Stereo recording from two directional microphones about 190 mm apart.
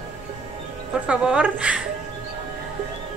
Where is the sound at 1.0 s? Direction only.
5° right (ahead or behind).